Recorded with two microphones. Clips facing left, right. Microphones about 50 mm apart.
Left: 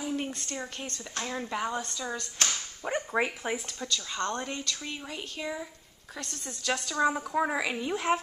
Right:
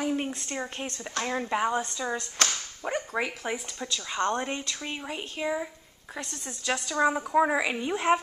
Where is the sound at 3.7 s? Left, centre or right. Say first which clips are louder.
Right 2 dB; centre.